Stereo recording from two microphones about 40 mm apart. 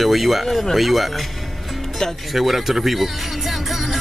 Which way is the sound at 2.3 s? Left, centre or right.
Centre.